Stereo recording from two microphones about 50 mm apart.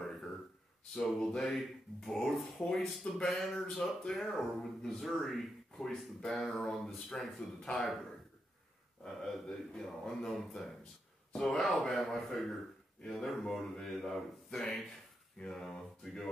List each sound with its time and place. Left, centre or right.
0.9 s speech: centre
7.7 s speech: left
9.0 s speech: centre